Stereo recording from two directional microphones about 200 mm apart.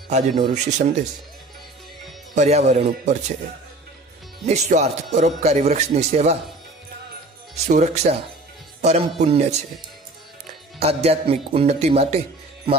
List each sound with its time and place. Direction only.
0.1 s speech: 35° right (ahead or behind)
2.3 s speech: 35° right (ahead or behind)
4.6 s speech: 35° right (ahead or behind)
7.5 s speech: 35° right (ahead or behind)
10.8 s speech: 30° right (ahead or behind)